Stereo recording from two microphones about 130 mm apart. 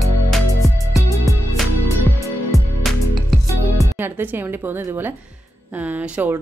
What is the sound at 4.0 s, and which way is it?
Speech, 15° right (ahead or behind).